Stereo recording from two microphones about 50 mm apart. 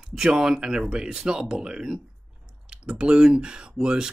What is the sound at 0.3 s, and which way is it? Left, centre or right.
Speech, centre.